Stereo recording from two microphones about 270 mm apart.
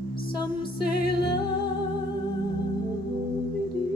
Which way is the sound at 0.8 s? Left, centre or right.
Left.